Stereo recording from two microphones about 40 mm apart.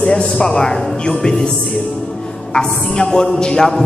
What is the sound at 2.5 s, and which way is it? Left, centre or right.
A man's voice, centre.